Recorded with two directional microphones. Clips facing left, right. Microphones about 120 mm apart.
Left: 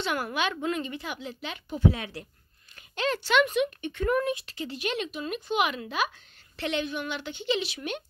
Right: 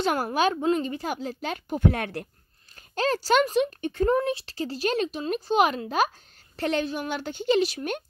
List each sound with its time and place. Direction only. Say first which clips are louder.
0.0 s speech: right 5 dB; 40° right (ahead or behind)
2.7 s speech: right 4 dB; 40° right (ahead or behind)